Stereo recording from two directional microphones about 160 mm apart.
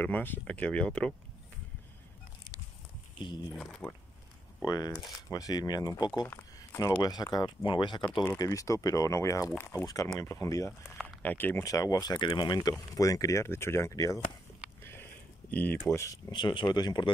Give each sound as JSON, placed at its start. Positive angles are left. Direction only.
{"t": 0.0, "sound": "speech", "side_deg": 10}
{"t": 3.2, "sound": "speech", "side_deg": 30}
{"t": 3.5, "sound": "speech", "side_deg": 5}
{"t": 4.6, "sound": "speech", "side_deg": 25}
{"t": 6.2, "sound": "speech", "side_deg": 15}
{"t": 14.8, "sound": "a sound", "side_deg": 15}
{"t": 15.5, "sound": "speech", "side_deg": 10}